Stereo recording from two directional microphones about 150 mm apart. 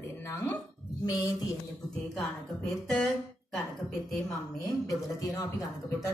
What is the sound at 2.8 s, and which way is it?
Speech, centre (ahead or behind).